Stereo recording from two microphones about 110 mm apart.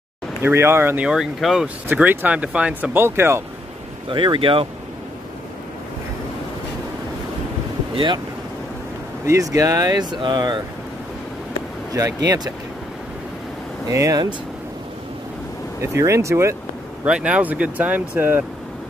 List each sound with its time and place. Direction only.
0.4 s speech: 20° right (ahead or behind)
1.0 s speech: 5° right (ahead or behind); by 3.4 s 20° right (ahead or behind)
4.1 s speech: 50° right (ahead or behind)
7.9 s speech: 45° right (ahead or behind)
9.2 s speech: 25° right (ahead or behind)
11.9 s speech: 30° right (ahead or behind)
13.8 s speech: 30° right (ahead or behind)
15.8 s speech: 25° right (ahead or behind)
17.0 s speech: 10° right (ahead or behind)